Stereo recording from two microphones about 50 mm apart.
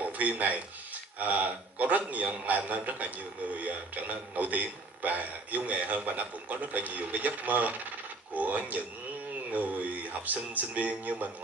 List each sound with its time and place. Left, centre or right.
0.0 s a man's voice: right